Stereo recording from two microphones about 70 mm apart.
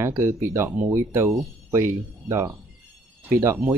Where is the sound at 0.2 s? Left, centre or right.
Right.